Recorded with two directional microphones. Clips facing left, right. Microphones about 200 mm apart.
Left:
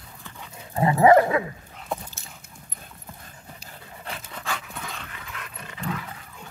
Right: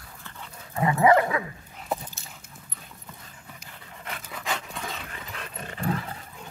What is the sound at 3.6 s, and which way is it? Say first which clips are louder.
Dog: left 2 dB; 30° left (ahead or behind).